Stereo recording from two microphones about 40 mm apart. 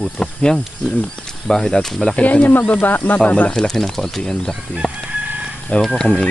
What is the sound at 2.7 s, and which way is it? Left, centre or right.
Speech, left.